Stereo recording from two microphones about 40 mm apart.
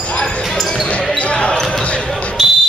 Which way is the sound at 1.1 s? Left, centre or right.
Left.